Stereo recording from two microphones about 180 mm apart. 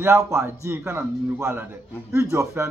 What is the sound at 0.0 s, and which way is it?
A man's voice, 15° right (ahead or behind).